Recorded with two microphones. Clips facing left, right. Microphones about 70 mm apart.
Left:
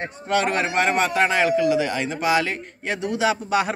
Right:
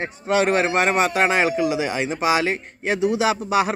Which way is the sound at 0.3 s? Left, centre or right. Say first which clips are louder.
Right 3 dB; centre.